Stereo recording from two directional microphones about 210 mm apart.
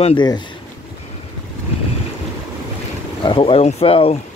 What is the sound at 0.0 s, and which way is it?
Speech, 20° left (ahead or behind).